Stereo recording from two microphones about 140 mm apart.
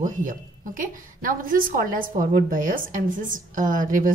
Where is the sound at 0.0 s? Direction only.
70° right (ahead or behind).